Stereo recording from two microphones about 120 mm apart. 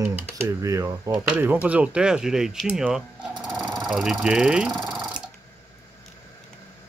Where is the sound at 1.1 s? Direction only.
15° right (ahead or behind).